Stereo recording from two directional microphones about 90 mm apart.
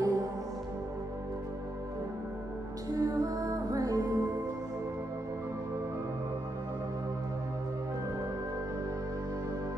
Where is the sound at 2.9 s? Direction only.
40° right (ahead or behind).